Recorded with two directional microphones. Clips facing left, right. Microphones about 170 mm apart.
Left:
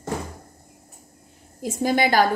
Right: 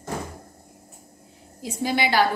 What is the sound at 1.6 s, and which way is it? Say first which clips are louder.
Speech: left 3 dB; 45° left (ahead or behind).